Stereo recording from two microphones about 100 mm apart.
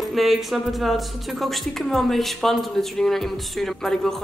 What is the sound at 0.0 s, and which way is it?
Speech, centre (ahead or behind).